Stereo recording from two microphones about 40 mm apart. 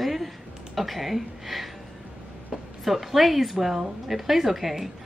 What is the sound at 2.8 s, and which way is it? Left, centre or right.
Speech, centre.